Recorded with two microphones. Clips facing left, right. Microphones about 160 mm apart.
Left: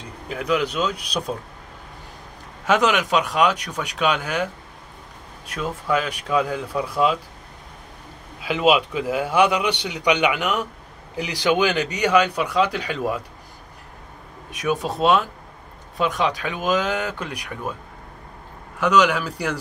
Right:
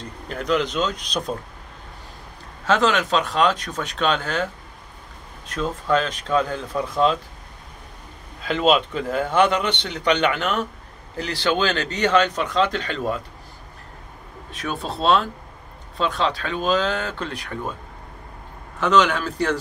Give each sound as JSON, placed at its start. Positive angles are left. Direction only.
{"t": 0.3, "sound": "a man's voice", "side_deg": 10}
{"t": 2.6, "sound": "a man's voice", "side_deg": 15}
{"t": 5.5, "sound": "a man's voice", "side_deg": 10}
{"t": 8.4, "sound": "a man's voice", "side_deg": 10}
{"t": 14.5, "sound": "a man's voice", "side_deg": 15}
{"t": 18.8, "sound": "a man's voice", "side_deg": 10}